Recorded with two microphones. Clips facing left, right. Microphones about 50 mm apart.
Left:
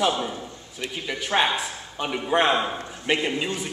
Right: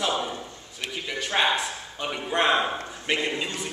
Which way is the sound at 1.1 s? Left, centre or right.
Centre.